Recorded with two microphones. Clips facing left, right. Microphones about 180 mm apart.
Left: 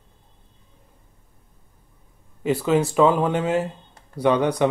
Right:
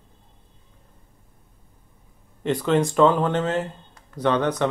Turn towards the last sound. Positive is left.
turn(degrees=10)  # may be behind; listen again after turning